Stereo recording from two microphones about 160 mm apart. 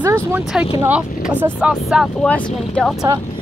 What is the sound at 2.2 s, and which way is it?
Speech, 10° left (ahead or behind).